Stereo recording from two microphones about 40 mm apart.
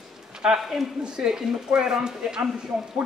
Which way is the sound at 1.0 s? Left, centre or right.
Centre.